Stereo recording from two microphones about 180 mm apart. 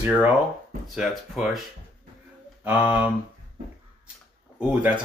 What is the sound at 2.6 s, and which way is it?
Speech, 10° right (ahead or behind).